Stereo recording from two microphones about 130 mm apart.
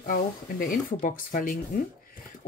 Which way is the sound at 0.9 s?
90° left.